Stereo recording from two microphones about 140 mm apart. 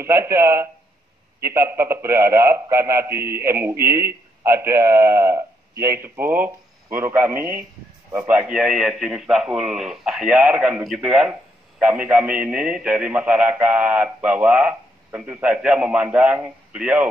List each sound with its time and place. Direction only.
0.0 s a man's voice: 20° right (ahead or behind)